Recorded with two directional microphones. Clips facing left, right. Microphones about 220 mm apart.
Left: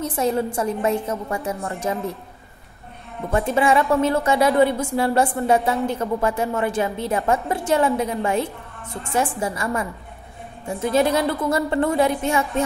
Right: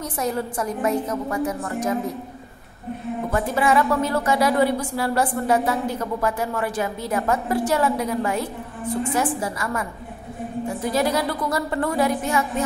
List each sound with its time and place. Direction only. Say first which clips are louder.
0.0 s a woman's voice: left 4 dB; 25° left (ahead or behind)
3.3 s a woman's voice: left 3 dB; 25° left (ahead or behind)